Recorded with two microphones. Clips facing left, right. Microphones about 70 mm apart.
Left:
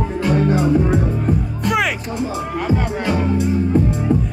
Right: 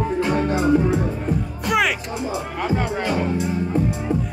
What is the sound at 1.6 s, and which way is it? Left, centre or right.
Music, centre.